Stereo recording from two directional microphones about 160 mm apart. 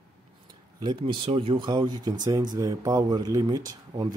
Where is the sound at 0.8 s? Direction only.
30° right (ahead or behind).